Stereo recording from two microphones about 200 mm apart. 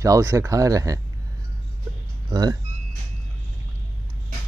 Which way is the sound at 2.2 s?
20° right (ahead or behind).